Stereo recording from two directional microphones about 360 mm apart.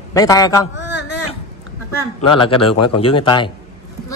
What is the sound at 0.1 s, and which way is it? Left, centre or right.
Speech, centre.